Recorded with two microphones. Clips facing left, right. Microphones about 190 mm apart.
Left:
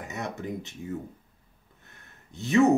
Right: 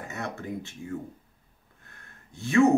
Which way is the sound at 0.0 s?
15° left (ahead or behind).